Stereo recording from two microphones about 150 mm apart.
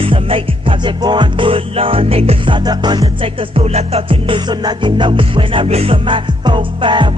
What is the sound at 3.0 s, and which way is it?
Music, 40° right (ahead or behind).